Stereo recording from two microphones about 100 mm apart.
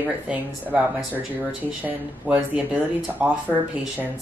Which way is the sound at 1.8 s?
15° right (ahead or behind).